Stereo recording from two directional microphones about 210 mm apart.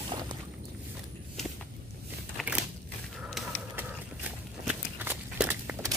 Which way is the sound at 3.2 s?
5° right (ahead or behind).